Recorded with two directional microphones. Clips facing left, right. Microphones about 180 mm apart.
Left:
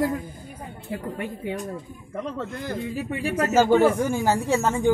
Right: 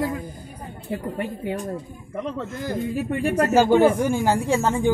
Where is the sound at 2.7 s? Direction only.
50° right (ahead or behind).